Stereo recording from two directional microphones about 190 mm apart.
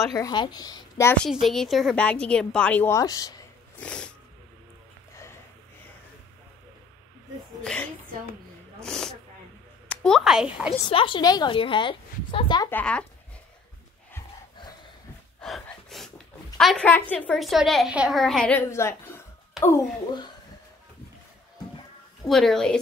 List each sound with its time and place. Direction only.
0.1 s a woman's voice: 20° left (ahead or behind)
1.2 s a woman's voice: centre (ahead or behind); by 3.4 s 20° left (ahead or behind)
3.8 s a woman's voice: 5° left (ahead or behind)
7.6 s a woman's voice: 5° left (ahead or behind)
8.8 s snake: 5° left (ahead or behind)
9.8 s speech: 5° left (ahead or behind)
10.7 s a woman's voice: 30° left (ahead or behind)
12.6 s speech: 10° left (ahead or behind)
15.4 s gasp: centre (ahead or behind)
16.5 s a woman's voice: 5° left (ahead or behind)
22.2 s a woman's voice: centre (ahead or behind)